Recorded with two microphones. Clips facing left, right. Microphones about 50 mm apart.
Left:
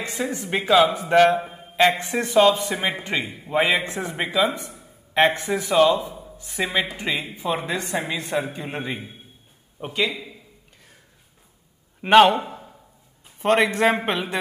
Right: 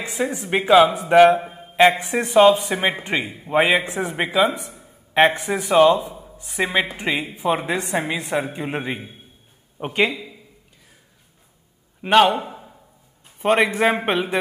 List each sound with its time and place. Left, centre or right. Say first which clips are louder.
0.0 s a man's voice: right 3 dB; centre
1.4 s mantra: right 1 dB; centre
1.8 s a man's voice: right 3 dB; centre
4.7 s a sound: right 3 dB; right
5.5 s a man's voice: right 3 dB; right
9.8 s a man's voice: right 4 dB; right
12.0 s a man's voice: left 1 dB; centre
13.4 s a man's voice: right 1 dB; centre